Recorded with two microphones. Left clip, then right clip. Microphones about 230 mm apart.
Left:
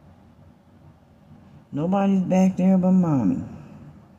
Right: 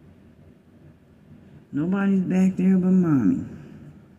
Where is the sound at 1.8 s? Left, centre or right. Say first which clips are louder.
Left 3 dB; left.